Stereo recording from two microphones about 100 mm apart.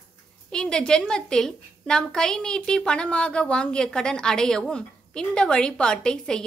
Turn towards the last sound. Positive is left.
turn(degrees=5)  # may be behind; listen again after turning